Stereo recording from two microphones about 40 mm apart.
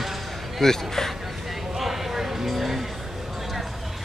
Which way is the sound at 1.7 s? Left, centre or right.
Centre.